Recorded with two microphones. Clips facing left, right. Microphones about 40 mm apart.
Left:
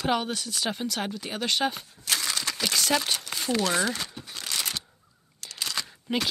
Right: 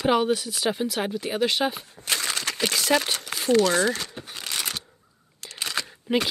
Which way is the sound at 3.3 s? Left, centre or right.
Centre.